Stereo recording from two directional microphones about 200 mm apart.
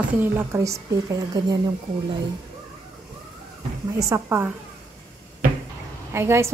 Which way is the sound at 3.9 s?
15° right (ahead or behind).